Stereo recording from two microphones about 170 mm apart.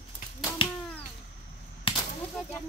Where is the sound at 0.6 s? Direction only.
30° left (ahead or behind).